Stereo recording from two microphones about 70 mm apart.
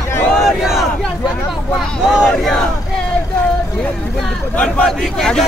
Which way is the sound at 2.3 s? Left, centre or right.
Centre.